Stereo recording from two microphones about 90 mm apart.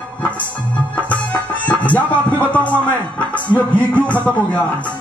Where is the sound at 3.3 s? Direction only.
15° left (ahead or behind).